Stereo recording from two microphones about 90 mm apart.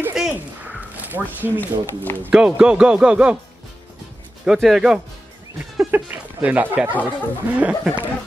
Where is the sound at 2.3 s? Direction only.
10° right (ahead or behind).